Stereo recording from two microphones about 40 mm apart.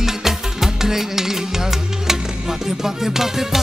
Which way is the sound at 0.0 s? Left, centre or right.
Centre.